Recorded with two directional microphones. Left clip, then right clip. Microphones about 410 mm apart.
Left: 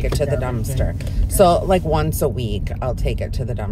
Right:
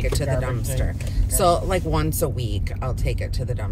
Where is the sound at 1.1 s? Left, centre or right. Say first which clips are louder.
Left 5 dB; centre.